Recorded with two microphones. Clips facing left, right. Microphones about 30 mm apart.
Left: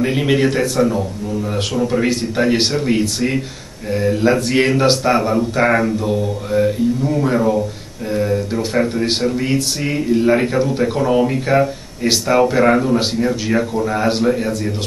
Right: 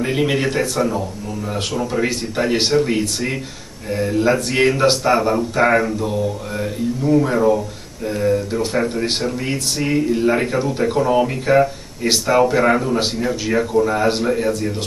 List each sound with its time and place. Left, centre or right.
0.0 s speech: centre